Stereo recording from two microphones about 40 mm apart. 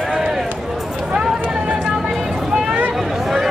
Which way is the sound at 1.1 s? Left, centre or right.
Centre.